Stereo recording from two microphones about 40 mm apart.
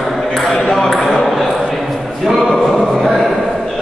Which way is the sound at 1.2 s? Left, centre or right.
Centre.